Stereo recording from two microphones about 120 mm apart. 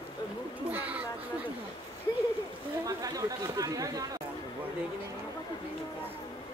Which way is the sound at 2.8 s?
30° right (ahead or behind).